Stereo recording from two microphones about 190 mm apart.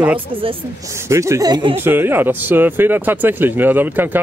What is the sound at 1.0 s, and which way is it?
Speech, 15° right (ahead or behind).